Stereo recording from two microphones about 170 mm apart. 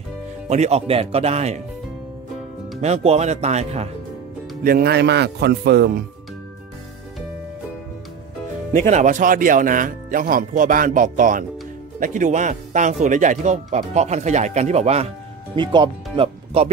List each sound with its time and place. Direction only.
0.5 s speech: 40° right (ahead or behind)
2.8 s speech: 40° right (ahead or behind)
4.6 s a man's voice: 65° right (ahead or behind)
8.7 s speech: 45° right (ahead or behind)
15.5 s speech: 30° right (ahead or behind)